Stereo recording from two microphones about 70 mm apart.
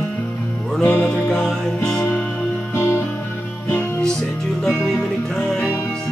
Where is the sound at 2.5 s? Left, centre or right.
Left.